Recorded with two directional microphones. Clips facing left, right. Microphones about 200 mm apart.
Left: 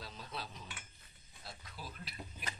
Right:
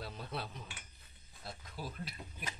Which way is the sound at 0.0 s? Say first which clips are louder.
Right 4 dB; 55° right (ahead or behind).